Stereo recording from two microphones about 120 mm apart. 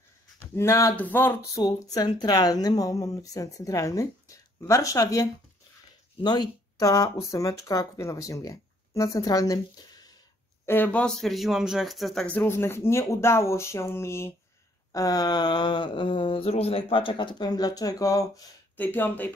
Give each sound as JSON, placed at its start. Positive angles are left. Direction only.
{"t": 0.4, "sound": "speech", "side_deg": 20}
{"t": 1.6, "sound": "speech", "side_deg": 35}
{"t": 10.6, "sound": "speech", "side_deg": 15}
{"t": 12.3, "sound": "speech", "side_deg": 15}
{"t": 18.8, "sound": "speech", "side_deg": 15}